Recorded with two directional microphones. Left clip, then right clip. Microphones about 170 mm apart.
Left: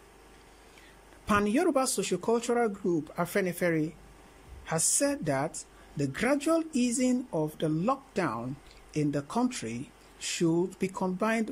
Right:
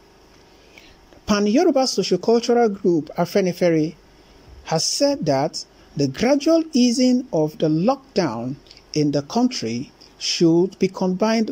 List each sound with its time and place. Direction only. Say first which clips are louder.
1.2 s speech: right 8 dB; 15° right (ahead or behind)